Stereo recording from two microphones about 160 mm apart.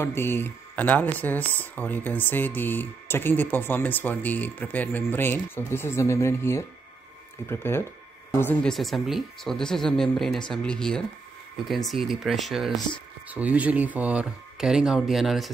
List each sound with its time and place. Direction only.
0.0 s speech: 15° left (ahead or behind)
8.7 s speech: centre (ahead or behind)